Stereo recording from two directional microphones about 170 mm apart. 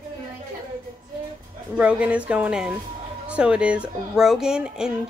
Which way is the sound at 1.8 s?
5° right (ahead or behind).